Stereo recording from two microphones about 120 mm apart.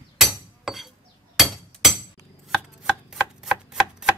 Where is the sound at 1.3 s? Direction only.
Centre (ahead or behind).